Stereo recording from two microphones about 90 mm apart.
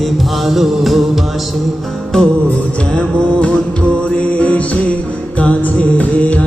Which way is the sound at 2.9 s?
10° left (ahead or behind).